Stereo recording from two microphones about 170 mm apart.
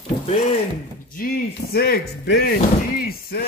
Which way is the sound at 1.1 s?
60° left (ahead or behind).